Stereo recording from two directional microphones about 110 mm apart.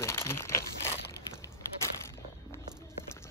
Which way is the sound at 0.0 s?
25° left (ahead or behind).